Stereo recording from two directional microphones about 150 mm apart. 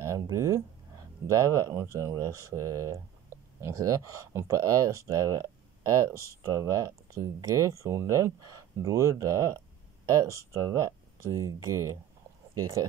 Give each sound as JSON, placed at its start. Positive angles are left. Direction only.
{"t": 0.0, "sound": "speech", "side_deg": -20}